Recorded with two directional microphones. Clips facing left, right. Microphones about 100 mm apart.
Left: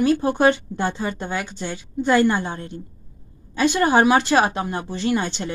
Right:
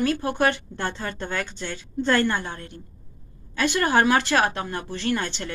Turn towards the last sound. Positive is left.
turn(degrees=20)  # may be behind; listen again after turning